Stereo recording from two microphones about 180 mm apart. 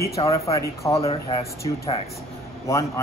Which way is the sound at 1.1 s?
30° left (ahead or behind).